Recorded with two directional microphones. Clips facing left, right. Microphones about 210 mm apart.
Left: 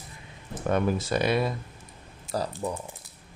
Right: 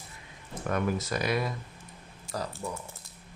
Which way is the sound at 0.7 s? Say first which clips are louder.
Left 4 dB; 30° left (ahead or behind).